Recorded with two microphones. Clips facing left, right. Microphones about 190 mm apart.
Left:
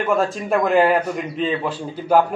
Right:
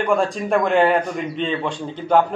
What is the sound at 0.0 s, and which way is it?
A man's voice, centre (ahead or behind).